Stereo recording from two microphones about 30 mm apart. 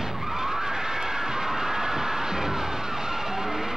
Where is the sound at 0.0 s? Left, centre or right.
Centre.